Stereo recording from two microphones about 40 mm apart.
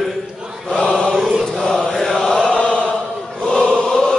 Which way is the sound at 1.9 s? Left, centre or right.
Centre.